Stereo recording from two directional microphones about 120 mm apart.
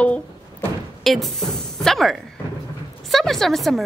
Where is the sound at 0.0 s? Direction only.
10° left (ahead or behind).